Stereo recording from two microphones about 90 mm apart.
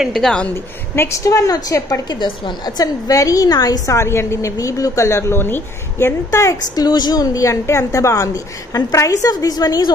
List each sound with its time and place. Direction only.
0.0 s speech: centre (ahead or behind)
0.9 s a woman's voice: 35° left (ahead or behind)
2.1 s a woman's voice: 60° left (ahead or behind)
2.8 s a woman's voice: 40° left (ahead or behind)